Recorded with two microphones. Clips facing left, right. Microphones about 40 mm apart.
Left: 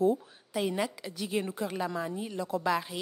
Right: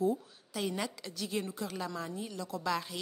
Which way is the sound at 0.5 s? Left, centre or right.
Centre.